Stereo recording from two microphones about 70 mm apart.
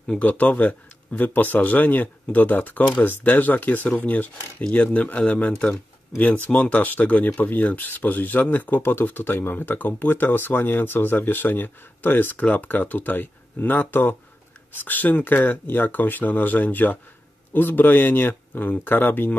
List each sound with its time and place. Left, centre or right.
0.2 s speech: left